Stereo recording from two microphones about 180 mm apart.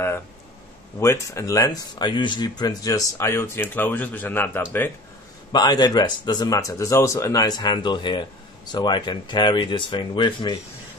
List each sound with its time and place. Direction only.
0.9 s speech: 15° left (ahead or behind)
5.5 s speech: 25° left (ahead or behind)